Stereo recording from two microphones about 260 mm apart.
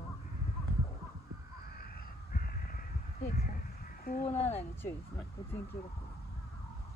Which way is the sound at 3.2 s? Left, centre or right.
Left.